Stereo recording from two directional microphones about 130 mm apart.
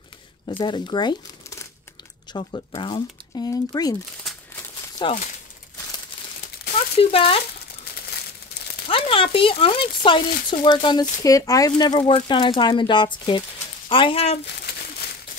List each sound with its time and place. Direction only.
0.5 s speech: 40° left (ahead or behind)
2.3 s speech: 40° left (ahead or behind)
7.0 s speech: 45° left (ahead or behind)
8.8 s speech: 45° left (ahead or behind)